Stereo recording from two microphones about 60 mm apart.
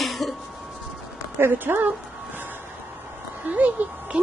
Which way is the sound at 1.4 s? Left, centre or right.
Right.